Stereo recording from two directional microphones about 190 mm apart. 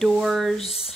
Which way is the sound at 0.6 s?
30° left (ahead or behind).